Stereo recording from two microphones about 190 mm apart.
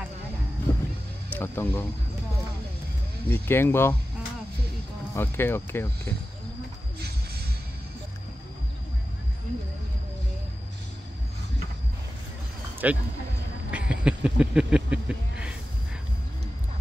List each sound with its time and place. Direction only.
0.7 s music: 20° left (ahead or behind)
1.3 s speech: 10° left (ahead or behind)
3.3 s speech: 10° left (ahead or behind)
5.1 s speech: 10° left (ahead or behind)
12.8 s speech: 10° right (ahead or behind)
13.7 s a sound: 5° right (ahead or behind)